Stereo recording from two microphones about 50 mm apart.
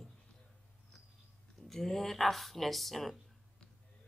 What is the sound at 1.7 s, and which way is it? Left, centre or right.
Speech, centre.